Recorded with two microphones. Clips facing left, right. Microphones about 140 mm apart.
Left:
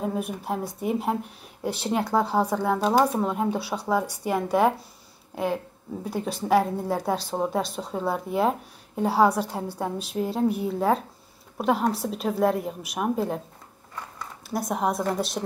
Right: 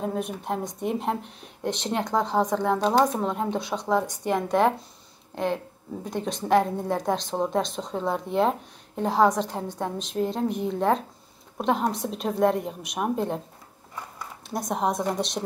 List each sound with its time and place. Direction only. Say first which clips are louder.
0.0 s a woman's voice: even; 5° left (ahead or behind)
14.5 s a woman's voice: even; centre (ahead or behind)